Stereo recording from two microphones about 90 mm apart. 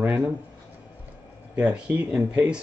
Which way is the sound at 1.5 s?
15° right (ahead or behind).